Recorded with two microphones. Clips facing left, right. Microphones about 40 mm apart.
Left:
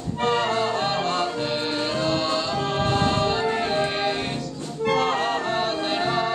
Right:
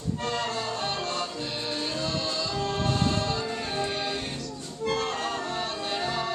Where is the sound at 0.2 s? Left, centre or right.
Left.